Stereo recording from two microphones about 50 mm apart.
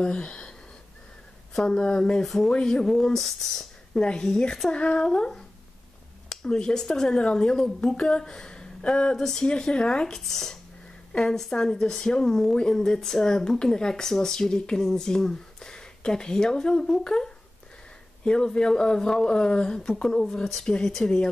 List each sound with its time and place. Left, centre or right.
0.0 s speech: centre
9.1 s speech: centre
10.2 s speech: centre